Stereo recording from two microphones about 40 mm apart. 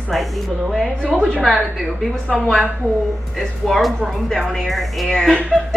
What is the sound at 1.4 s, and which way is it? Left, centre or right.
Speech, centre.